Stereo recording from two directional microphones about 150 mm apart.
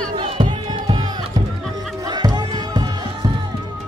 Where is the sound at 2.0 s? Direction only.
30° right (ahead or behind).